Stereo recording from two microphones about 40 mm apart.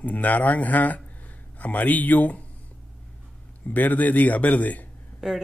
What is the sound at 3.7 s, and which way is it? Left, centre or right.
A man's voice, left.